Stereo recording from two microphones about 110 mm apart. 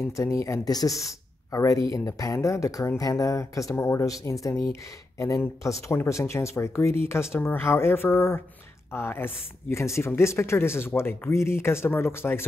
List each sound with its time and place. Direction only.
0.0 s speech: 25° left (ahead or behind)